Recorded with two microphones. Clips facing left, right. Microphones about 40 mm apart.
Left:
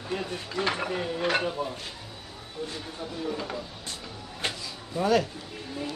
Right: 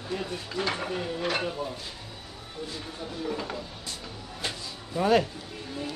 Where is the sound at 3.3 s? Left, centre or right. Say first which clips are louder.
Even; centre.